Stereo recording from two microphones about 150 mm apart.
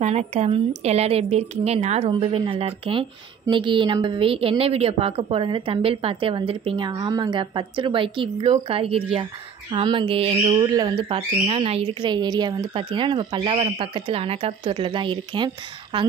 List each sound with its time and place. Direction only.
0.0 s a woman's voice: 45° right (ahead or behind)
6.9 s a woman's voice: 25° right (ahead or behind)
11.1 s a woman's voice: 40° right (ahead or behind)